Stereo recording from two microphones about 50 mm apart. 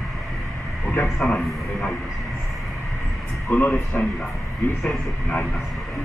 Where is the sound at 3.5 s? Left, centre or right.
Left.